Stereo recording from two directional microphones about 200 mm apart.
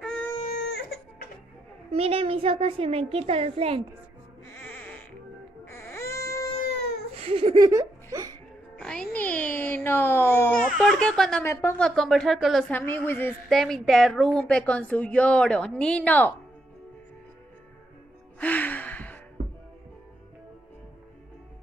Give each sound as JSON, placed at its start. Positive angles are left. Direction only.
{"t": 0.0, "sound": "baby cry", "side_deg": 5}
{"t": 0.6, "sound": "music", "side_deg": 55}
{"t": 1.9, "sound": "a child's voice", "side_deg": -30}
{"t": 4.6, "sound": "music", "side_deg": 5}
{"t": 5.7, "sound": "baby cry", "side_deg": 15}
{"t": 7.2, "sound": "speech", "side_deg": -30}
{"t": 8.7, "sound": "music", "side_deg": 5}
{"t": 10.6, "sound": "speech", "side_deg": 0}
{"t": 11.4, "sound": "a woman's voice", "side_deg": 15}
{"t": 11.8, "sound": "a woman's voice", "side_deg": 0}
{"t": 18.4, "sound": "music", "side_deg": 10}